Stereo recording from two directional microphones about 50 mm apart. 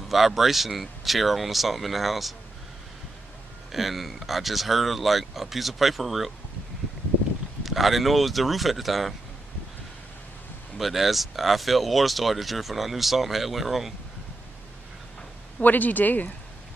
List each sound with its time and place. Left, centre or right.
0.1 s speech: centre
3.7 s speech: centre
7.6 s speech: centre
10.8 s speech: centre
15.6 s speech: left